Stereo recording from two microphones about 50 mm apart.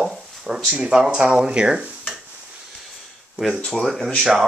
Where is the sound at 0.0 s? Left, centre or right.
Centre; by 2.0 s right.